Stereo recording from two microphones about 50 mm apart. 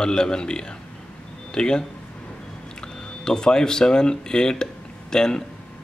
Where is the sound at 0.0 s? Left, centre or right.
Centre.